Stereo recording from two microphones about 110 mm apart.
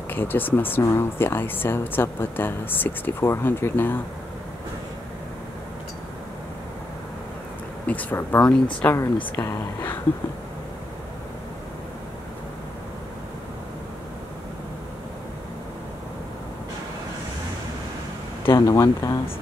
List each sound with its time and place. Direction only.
0.1 s speech: 20° left (ahead or behind)
7.8 s speech: 15° left (ahead or behind)
18.7 s speech: 30° left (ahead or behind)